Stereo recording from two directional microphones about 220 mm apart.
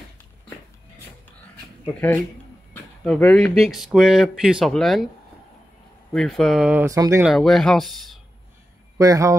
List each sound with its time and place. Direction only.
2.0 s speech: 10° left (ahead or behind)
6.1 s speech: centre (ahead or behind)
7.2 s speech: centre (ahead or behind)
8.9 s a man's voice: 15° right (ahead or behind)